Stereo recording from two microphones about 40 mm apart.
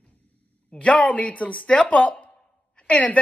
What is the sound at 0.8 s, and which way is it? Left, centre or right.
Speech, left.